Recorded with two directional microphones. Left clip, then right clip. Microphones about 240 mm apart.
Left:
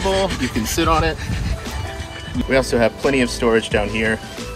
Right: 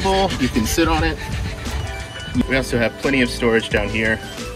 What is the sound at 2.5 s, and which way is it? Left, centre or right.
Speech, centre.